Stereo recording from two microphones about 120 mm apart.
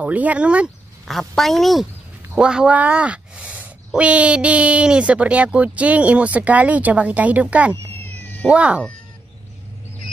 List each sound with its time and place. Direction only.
0.0 s speech: 15° right (ahead or behind)
1.1 s a woman's voice: centre (ahead or behind)
7.7 s cat: 20° left (ahead or behind)
8.5 s speech: 10° right (ahead or behind)